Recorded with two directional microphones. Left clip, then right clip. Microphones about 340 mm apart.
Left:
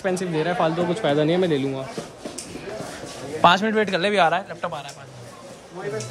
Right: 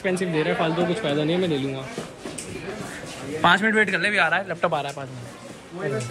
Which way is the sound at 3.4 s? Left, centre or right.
Centre.